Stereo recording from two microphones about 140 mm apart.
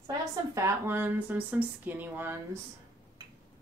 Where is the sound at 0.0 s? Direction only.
25° right (ahead or behind).